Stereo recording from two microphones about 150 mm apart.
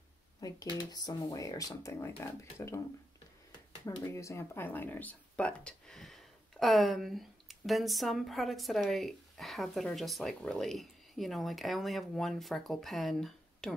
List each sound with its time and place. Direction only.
0.4 s speech: 25° left (ahead or behind)
3.8 s speech: 20° left (ahead or behind); by 13.7 s centre (ahead or behind)